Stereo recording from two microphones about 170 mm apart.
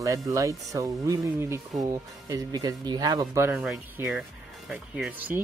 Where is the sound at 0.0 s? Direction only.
20° right (ahead or behind).